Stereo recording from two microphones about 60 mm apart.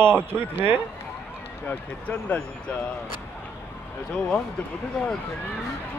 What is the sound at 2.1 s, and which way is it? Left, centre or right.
Speech, left.